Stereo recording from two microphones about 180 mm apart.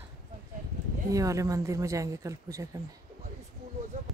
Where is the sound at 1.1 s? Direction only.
20° right (ahead or behind).